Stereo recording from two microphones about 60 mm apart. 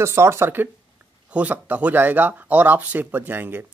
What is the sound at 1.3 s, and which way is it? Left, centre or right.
Speech, right.